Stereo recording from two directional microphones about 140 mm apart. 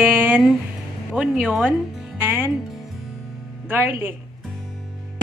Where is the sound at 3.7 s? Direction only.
15° right (ahead or behind).